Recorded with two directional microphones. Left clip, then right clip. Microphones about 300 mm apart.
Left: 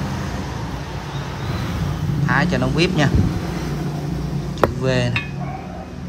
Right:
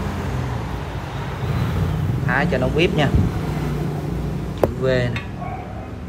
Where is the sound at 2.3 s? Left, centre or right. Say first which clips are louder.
Even; centre.